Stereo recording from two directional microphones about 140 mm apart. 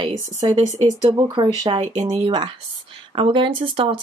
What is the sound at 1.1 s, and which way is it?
Speech, 30° right (ahead or behind).